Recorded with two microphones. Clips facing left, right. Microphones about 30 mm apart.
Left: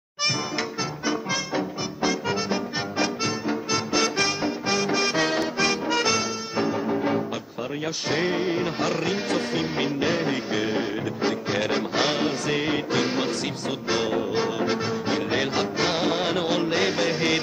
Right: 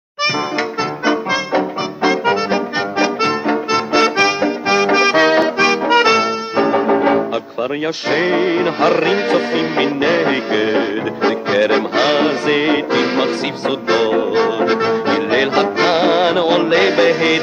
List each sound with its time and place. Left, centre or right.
1.0 s brass instrument: right
2.0 s music: right